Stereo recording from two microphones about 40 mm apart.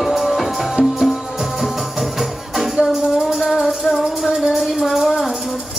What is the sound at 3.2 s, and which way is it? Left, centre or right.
Music, centre.